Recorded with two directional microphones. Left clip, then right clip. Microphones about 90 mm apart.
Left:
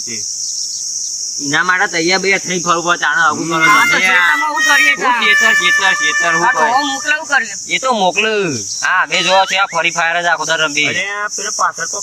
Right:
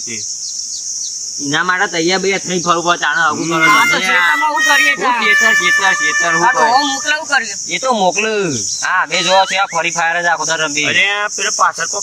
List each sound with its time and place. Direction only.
1.5 s speech: 5° left (ahead or behind)
6.8 s speech: 20° right (ahead or behind)
7.7 s speech: 5° left (ahead or behind)
10.9 s speech: 45° right (ahead or behind)